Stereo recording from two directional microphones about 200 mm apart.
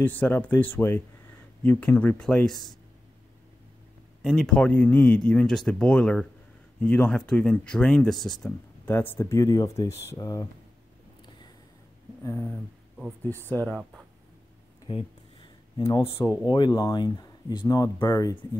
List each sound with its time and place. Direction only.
0.0 s speech: 10° left (ahead or behind)
4.2 s speech: centre (ahead or behind); by 10.5 s 15° left (ahead or behind)
12.2 s a sound: 15° left (ahead or behind)
12.4 s speech: 5° right (ahead or behind)
13.2 s speech: 10° left (ahead or behind)
13.7 s speech: 5° right (ahead or behind)
14.9 s speech: 25° left (ahead or behind)